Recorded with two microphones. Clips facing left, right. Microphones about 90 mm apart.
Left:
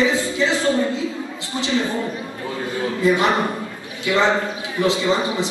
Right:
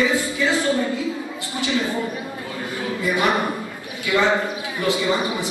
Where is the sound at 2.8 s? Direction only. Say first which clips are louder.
Left 4 dB; 25° left (ahead or behind).